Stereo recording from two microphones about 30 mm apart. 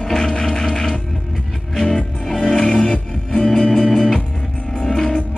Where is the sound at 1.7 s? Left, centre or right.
Centre.